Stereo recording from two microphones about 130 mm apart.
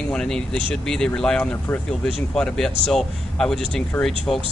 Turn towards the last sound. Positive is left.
turn(degrees=5)  # may be behind; listen again after turning